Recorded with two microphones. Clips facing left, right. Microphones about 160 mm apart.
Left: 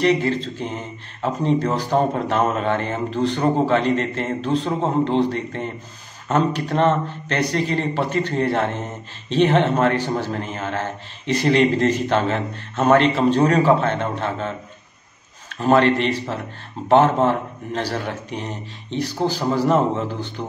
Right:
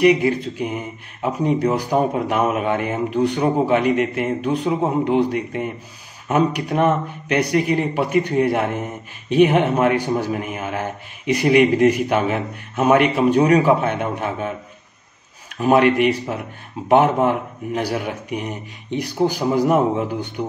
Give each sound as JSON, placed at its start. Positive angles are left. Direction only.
{"t": 0.0, "sound": "speech", "side_deg": -10}
{"t": 15.6, "sound": "speech", "side_deg": -15}